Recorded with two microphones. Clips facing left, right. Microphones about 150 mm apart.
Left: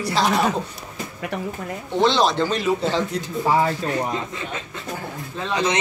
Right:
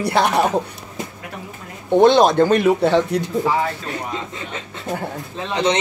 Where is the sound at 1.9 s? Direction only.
50° right (ahead or behind).